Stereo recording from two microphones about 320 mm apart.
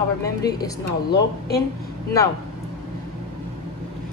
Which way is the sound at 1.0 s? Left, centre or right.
Left.